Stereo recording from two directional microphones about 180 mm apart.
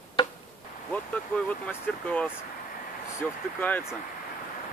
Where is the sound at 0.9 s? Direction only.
10° left (ahead or behind).